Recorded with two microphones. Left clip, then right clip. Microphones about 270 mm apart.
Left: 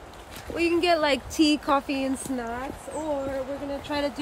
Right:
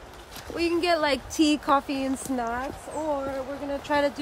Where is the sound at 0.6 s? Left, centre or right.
Right.